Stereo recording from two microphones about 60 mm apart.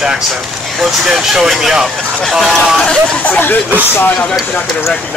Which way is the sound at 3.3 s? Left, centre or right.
Left.